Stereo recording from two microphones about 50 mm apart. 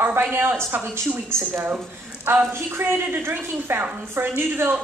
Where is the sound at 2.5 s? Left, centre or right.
Right.